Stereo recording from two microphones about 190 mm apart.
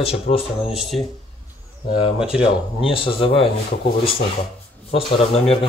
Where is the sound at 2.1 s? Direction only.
5° right (ahead or behind).